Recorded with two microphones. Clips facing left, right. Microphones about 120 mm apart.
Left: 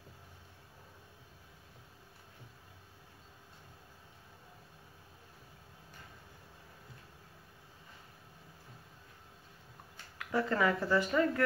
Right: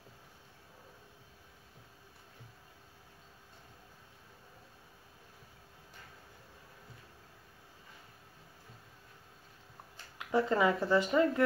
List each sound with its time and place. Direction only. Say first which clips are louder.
10.1 s speech: right 3 dB; 20° right (ahead or behind)